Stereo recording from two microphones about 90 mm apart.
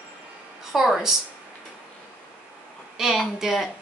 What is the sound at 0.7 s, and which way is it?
Speech, centre (ahead or behind).